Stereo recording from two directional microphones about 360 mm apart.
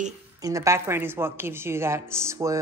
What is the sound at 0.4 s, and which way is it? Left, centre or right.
A woman's voice, centre.